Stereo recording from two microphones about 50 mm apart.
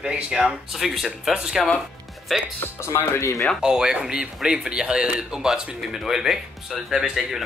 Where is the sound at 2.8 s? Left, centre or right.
Left.